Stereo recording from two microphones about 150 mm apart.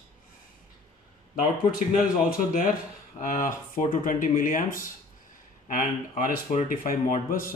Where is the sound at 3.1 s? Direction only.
60° left (ahead or behind).